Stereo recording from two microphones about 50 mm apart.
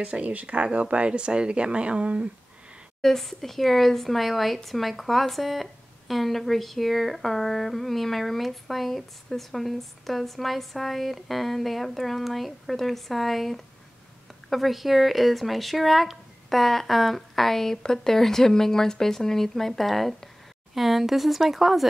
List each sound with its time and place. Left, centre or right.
0.0 s speech: right
3.0 s speech: centre